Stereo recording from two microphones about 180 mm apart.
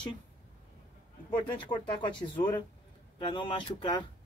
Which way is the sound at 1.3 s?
25° left (ahead or behind).